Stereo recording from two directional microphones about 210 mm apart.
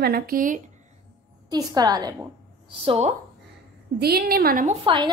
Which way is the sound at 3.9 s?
50° right (ahead or behind).